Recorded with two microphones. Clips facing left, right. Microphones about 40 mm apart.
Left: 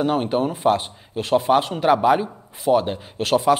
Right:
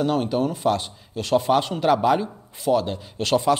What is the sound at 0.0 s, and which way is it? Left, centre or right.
Speech, left.